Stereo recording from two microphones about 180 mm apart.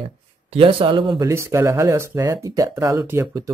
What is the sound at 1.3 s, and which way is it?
Speech, 15° right (ahead or behind).